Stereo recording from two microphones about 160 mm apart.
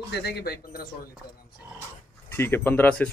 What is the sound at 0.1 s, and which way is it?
Speech, 80° left.